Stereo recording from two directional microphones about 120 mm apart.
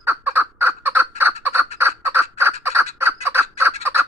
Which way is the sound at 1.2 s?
20° right (ahead or behind).